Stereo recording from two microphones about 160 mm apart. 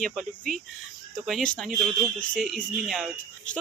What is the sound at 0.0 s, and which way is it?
Speech, 5° left (ahead or behind).